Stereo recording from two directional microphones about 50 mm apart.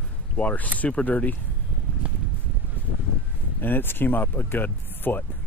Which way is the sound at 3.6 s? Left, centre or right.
Left.